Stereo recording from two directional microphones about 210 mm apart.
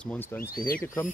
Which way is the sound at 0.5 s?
45° left (ahead or behind).